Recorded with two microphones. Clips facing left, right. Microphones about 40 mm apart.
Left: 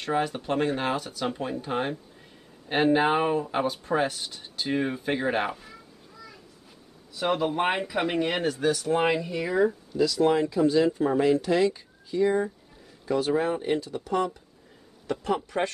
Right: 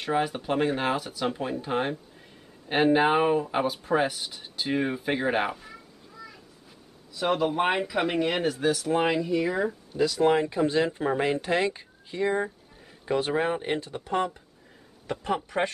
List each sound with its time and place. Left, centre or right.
0.0 s speech: centre
7.2 s speech: centre
9.9 s speech: right
15.3 s speech: centre